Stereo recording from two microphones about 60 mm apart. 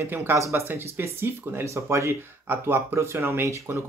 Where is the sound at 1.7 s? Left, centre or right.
Right.